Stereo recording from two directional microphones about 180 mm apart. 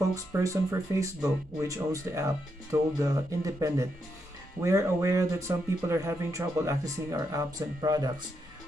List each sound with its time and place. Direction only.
0.0 s speech: 20° right (ahead or behind)